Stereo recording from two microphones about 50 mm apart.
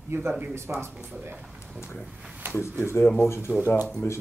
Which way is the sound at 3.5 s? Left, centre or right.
Centre.